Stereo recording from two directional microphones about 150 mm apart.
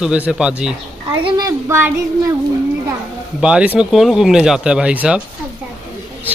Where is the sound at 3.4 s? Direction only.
5° right (ahead or behind).